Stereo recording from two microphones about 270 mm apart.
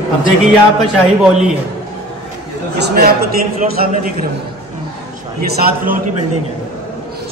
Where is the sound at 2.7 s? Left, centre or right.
Right.